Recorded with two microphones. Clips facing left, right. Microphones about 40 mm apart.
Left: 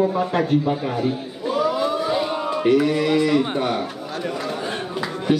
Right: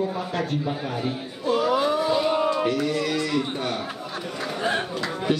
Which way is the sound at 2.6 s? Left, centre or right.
Centre.